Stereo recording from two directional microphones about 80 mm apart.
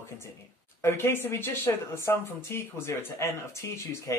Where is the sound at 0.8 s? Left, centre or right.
Left.